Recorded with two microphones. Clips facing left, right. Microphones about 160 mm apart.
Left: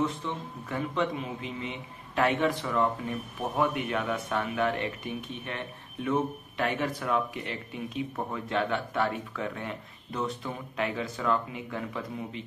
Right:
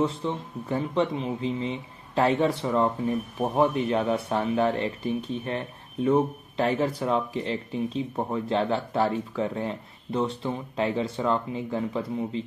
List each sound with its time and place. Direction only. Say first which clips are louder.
0.0 s speech: right 4 dB; 30° right (ahead or behind)